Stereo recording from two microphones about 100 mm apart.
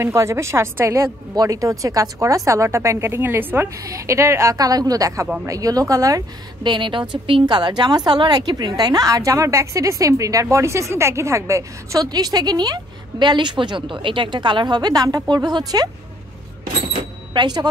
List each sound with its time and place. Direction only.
0.0 s a woman's voice: 30° right (ahead or behind)
3.7 s a woman's voice: 35° right (ahead or behind)
6.7 s a woman's voice: 55° right (ahead or behind)
17.3 s speech: 50° right (ahead or behind)